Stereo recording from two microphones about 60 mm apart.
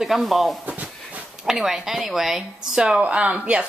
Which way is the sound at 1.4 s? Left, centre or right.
Centre.